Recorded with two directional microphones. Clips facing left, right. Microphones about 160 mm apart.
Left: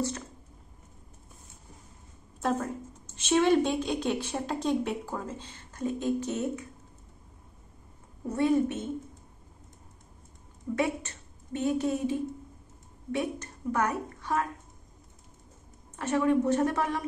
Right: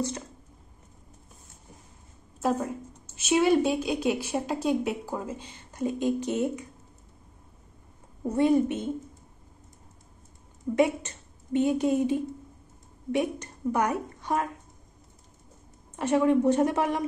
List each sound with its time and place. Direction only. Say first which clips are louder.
2.4 s a woman's voice: right 2 dB; 5° right (ahead or behind)
8.4 s a woman's voice: right 3 dB; 15° right (ahead or behind)
10.8 s a woman's voice: right 6 dB; 20° right (ahead or behind)
16.0 s a woman's voice: right 3 dB; 20° right (ahead or behind)